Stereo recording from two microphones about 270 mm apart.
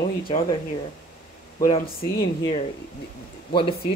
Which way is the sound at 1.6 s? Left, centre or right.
Left.